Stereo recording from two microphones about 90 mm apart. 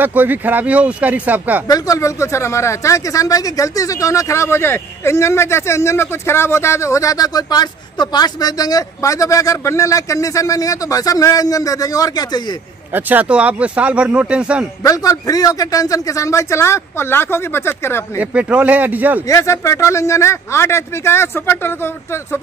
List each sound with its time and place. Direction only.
0.0 s speech: 20° right (ahead or behind)
1.7 s speech: 35° left (ahead or behind)
12.9 s speech: 20° right (ahead or behind)
14.8 s speech: 40° left (ahead or behind)
18.1 s speech: 15° right (ahead or behind)
19.2 s speech: 35° left (ahead or behind)